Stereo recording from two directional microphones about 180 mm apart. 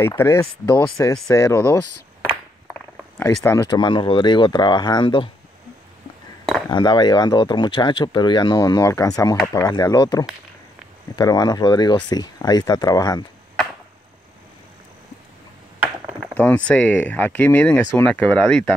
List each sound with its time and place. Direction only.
0.1 s speech: 15° left (ahead or behind)
2.2 s a sound: 10° left (ahead or behind)
3.4 s speech: 20° left (ahead or behind)
6.7 s speech: 25° left (ahead or behind)
16.3 s speech: 10° left (ahead or behind)